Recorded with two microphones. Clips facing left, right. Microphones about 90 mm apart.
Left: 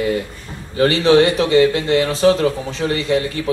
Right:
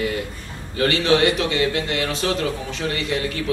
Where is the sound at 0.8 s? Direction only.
30° left (ahead or behind).